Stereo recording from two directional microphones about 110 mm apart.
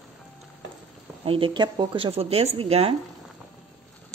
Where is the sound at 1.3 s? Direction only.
50° right (ahead or behind).